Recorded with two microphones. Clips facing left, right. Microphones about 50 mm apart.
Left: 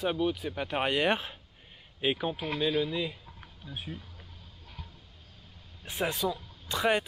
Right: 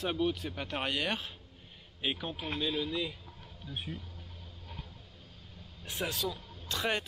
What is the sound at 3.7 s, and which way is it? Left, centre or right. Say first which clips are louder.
Speech: even; centre.